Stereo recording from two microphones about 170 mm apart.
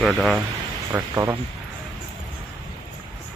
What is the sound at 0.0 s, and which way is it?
Speech, centre (ahead or behind).